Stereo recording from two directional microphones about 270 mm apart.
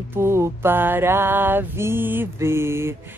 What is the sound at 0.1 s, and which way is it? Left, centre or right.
Mantra, centre.